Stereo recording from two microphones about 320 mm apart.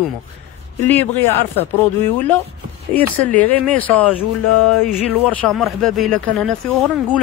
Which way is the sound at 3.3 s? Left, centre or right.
Centre.